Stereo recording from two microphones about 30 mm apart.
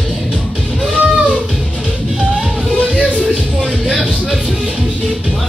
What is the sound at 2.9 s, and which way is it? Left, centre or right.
Music, right.